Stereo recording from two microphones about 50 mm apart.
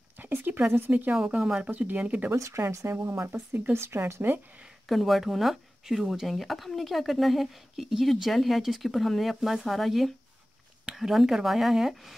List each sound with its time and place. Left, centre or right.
0.2 s speech: right
1.3 s speech: right
2.3 s speech: right
4.8 s speech: centre